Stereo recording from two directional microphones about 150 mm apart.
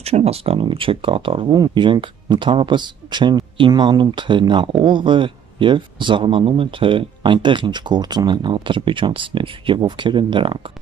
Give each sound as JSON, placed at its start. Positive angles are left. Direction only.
{"t": 0.0, "sound": "speech", "side_deg": -45}